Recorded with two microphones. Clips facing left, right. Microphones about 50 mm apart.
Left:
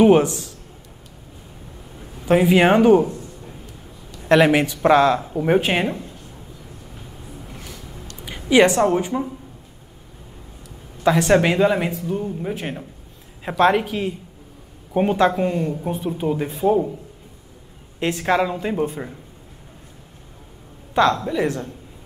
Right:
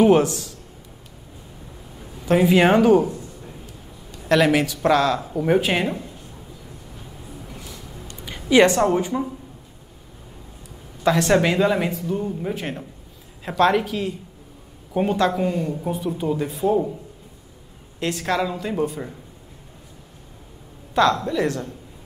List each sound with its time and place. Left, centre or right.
0.0 s speech: centre
2.2 s speech: centre
4.3 s speech: left
5.2 s speech: centre
7.5 s a sound: left
8.2 s speech: centre
11.1 s speech: centre
16.2 s speech: centre
18.0 s speech: centre
20.9 s speech: centre